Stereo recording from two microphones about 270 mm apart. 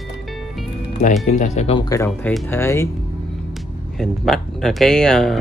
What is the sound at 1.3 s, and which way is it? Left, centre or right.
Speech, left.